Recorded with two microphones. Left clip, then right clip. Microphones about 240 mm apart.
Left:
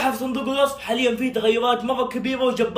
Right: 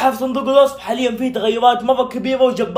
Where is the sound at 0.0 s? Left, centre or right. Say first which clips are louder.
Right 7 dB; centre.